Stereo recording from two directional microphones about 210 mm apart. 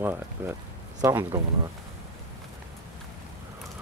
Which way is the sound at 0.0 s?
10° right (ahead or behind).